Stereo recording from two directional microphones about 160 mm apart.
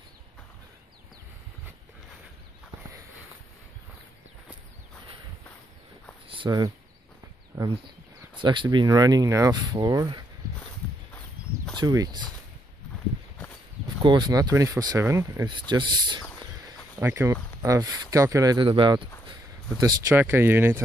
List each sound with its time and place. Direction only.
6.2 s a sound: 30° right (ahead or behind)
7.5 s speech: 30° right (ahead or behind)
11.8 s speech: 25° right (ahead or behind)
13.8 s speech: 30° right (ahead or behind)
17.0 s speech: 15° right (ahead or behind); by 19.3 s 30° right (ahead or behind)
20.2 s speech: 15° right (ahead or behind)